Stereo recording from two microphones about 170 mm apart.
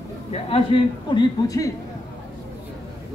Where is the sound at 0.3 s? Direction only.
35° left (ahead or behind).